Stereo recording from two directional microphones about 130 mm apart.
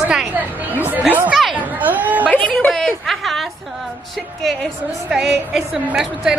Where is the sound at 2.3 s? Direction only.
10° left (ahead or behind).